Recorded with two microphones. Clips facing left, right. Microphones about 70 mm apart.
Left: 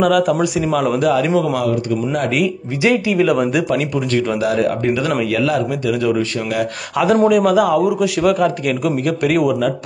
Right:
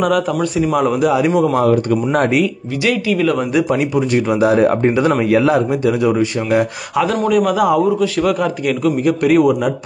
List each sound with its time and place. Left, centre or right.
0.0 s a man's voice: centre
2.8 s speech: centre
3.2 s a man's voice: centre
3.6 s speech: centre
7.2 s a man's voice: centre